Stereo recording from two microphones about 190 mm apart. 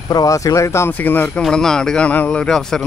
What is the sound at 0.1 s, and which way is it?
Speech, 20° left (ahead or behind).